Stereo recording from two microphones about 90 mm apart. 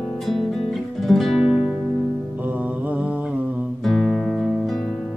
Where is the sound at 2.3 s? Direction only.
20° right (ahead or behind).